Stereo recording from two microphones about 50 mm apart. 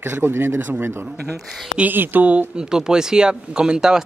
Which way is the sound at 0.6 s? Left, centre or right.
Right.